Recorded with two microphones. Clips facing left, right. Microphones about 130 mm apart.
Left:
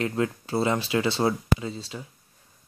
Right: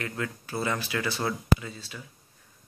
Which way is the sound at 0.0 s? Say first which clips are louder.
Left 7 dB; 25° left (ahead or behind).